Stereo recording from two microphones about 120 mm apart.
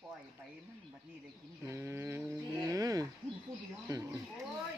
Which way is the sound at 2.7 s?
30° right (ahead or behind).